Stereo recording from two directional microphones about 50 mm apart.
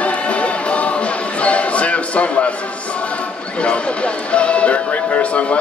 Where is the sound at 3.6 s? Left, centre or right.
Left.